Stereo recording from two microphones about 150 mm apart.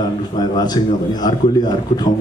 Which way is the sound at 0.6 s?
25° left (ahead or behind).